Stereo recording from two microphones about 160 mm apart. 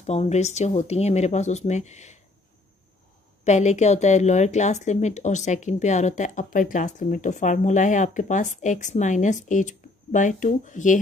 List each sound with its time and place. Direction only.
0.0 s speech: 45° left (ahead or behind)
3.4 s speech: 45° left (ahead or behind)